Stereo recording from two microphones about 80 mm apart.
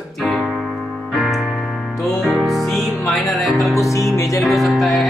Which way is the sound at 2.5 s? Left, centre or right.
Centre.